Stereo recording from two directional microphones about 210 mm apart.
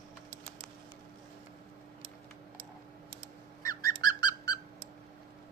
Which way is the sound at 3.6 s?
15° left (ahead or behind).